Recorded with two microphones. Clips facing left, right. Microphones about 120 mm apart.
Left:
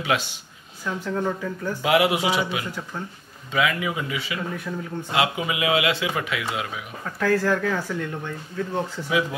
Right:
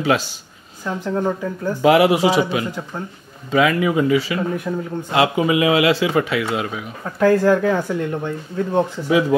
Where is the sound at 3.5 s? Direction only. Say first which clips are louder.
Right 7 dB; 40° right (ahead or behind).